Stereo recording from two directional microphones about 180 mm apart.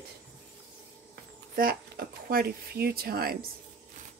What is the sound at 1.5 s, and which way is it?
Speech, 55° right (ahead or behind).